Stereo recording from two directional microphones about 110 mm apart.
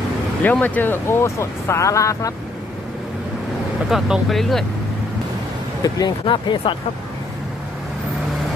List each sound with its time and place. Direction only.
0.4 s speech: 15° left (ahead or behind)
3.9 s speech: centre (ahead or behind)
5.8 s speech: 35° left (ahead or behind)
6.2 s speech: 50° left (ahead or behind)